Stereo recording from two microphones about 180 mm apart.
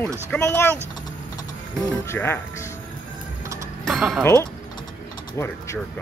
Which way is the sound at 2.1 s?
15° left (ahead or behind).